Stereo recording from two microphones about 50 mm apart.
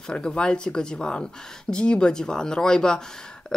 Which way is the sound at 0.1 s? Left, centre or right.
Centre.